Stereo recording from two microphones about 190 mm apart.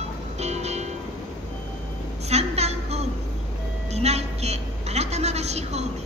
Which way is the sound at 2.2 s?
35° right (ahead or behind).